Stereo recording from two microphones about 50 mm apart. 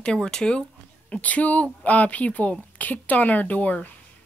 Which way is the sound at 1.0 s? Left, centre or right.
Left.